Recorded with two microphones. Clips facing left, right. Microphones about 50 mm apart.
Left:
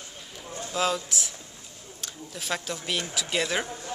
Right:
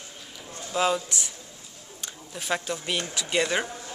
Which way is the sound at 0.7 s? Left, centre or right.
Centre.